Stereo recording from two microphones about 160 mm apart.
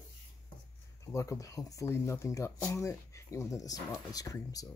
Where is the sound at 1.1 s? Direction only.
20° left (ahead or behind).